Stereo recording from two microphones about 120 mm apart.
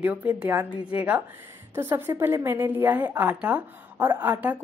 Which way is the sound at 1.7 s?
20° right (ahead or behind).